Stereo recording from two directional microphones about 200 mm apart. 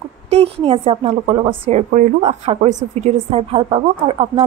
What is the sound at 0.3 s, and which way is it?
A woman's voice, 30° right (ahead or behind).